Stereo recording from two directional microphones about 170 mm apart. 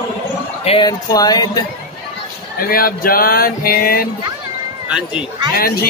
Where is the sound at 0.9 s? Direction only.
25° left (ahead or behind).